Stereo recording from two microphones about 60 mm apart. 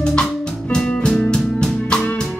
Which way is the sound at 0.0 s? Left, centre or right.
Centre.